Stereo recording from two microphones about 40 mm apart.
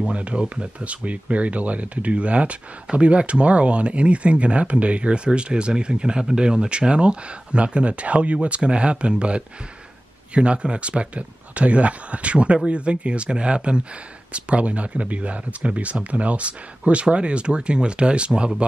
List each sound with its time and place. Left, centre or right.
0.1 s speech: right